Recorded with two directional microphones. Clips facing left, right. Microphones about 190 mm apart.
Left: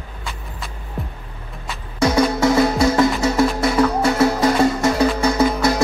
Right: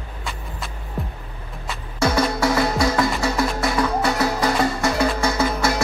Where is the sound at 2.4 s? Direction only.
25° left (ahead or behind).